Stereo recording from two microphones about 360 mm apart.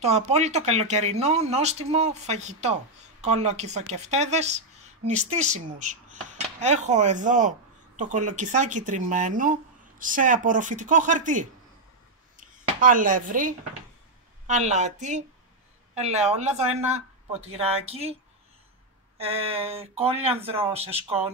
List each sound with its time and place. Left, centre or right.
0.0 s speech: centre
19.1 s speech: centre